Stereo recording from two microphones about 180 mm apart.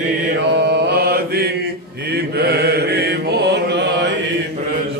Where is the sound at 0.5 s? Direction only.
70° right (ahead or behind).